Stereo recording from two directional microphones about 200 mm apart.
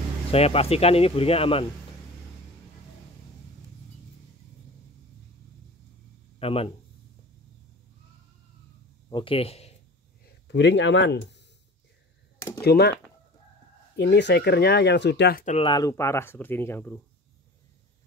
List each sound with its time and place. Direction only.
0.3 s speech: 30° left (ahead or behind)
6.4 s speech: 30° left (ahead or behind)
9.1 s a man's voice: 25° left (ahead or behind)
10.5 s speech: 60° left (ahead or behind)
12.4 s a sound: 15° left (ahead or behind)
12.6 s speech: 55° left (ahead or behind)
13.9 s speech: 60° left (ahead or behind)
15.4 s speech: 30° left (ahead or behind); by 16.9 s 10° left (ahead or behind)